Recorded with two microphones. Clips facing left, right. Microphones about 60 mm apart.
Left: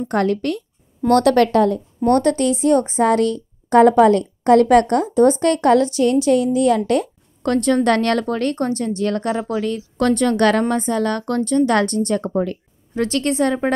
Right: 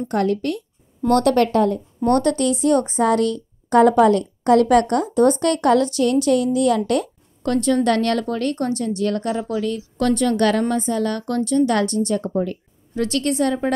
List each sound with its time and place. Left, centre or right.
0.1 s a woman's voice: left
1.0 s a woman's voice: left
2.0 s a woman's voice: left
7.4 s a woman's voice: left
12.9 s a woman's voice: left